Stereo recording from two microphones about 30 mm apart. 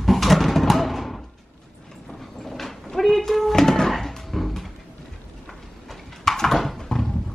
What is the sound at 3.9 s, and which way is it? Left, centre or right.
Music, centre.